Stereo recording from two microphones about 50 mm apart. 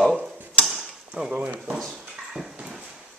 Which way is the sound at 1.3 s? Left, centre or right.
Right.